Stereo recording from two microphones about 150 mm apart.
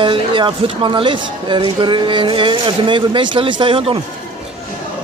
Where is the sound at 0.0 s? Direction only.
35° right (ahead or behind).